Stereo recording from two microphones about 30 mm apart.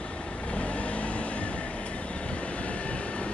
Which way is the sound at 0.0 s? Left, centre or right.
Left.